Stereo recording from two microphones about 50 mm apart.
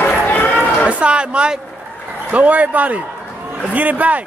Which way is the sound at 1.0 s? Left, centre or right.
Right.